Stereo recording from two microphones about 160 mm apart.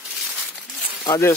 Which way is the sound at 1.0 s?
20° left (ahead or behind).